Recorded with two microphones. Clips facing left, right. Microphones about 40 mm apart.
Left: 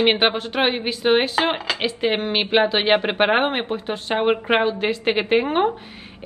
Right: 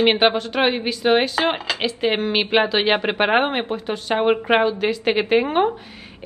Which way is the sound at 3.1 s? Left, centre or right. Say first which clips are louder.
Even; centre.